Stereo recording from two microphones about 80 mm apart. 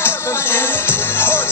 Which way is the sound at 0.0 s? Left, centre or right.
Left.